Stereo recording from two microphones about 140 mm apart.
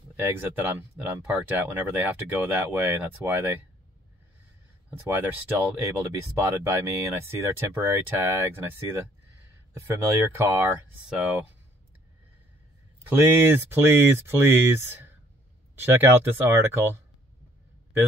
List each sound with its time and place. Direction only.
0.2 s speech: 15° right (ahead or behind)
4.9 s speech: 15° right (ahead or behind)
11.1 s speech: 5° right (ahead or behind)
13.1 s speech: 15° right (ahead or behind)